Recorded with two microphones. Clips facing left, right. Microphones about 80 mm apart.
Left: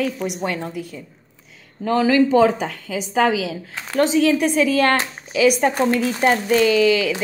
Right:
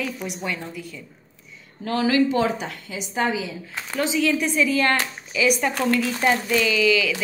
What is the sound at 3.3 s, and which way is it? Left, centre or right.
Speech, left.